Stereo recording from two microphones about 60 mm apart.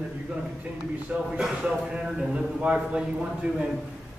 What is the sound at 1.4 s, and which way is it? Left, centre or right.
A man's voice, centre.